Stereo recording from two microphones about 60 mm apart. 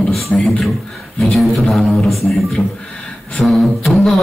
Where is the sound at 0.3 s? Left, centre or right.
Centre.